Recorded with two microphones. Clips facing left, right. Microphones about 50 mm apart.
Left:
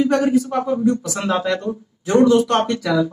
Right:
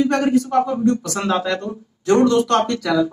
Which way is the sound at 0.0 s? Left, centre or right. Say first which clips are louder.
Left 1 dB; right.